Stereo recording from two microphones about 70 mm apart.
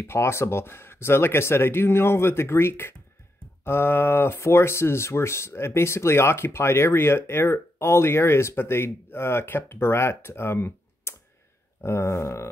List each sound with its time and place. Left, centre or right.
0.0 s speech: left
11.8 s a sound: left
12.1 s wail: left